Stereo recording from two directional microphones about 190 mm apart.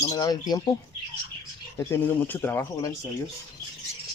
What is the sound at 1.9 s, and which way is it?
Speech, 10° left (ahead or behind).